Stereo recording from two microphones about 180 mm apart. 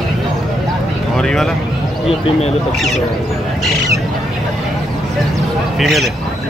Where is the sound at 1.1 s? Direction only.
5° left (ahead or behind).